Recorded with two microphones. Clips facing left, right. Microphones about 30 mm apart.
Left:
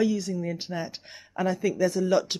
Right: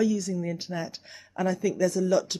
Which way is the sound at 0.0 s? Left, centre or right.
Left.